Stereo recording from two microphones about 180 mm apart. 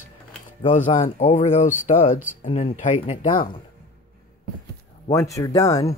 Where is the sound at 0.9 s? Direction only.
35° left (ahead or behind).